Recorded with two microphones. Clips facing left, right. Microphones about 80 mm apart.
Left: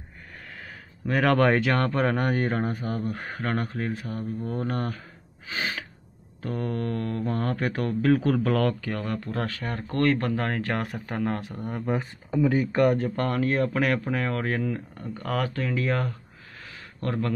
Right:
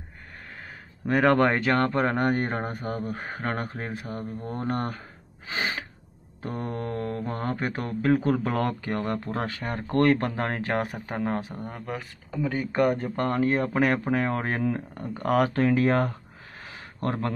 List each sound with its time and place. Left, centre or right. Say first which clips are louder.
1.1 s speech: even; centre
3.9 s speech: left 2 dB; centre
4.5 s speech: right 2 dB; centre
5.5 s gasp: right 1 dB; right
6.4 s speech: left 2 dB; centre
8.9 s speech: right 2 dB; right
11.4 s speech: left 5 dB; centre; by 16.2 s right
16.6 s a sound: right 2 dB; right